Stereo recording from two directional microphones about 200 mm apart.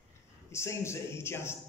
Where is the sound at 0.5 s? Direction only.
15° left (ahead or behind).